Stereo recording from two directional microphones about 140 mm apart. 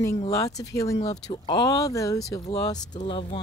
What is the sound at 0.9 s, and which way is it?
Speech, 50° left (ahead or behind).